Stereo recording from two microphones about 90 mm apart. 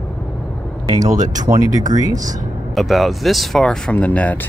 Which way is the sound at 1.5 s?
40° right (ahead or behind).